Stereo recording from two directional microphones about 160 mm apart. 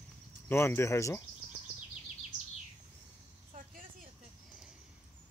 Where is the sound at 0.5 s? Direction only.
15° left (ahead or behind).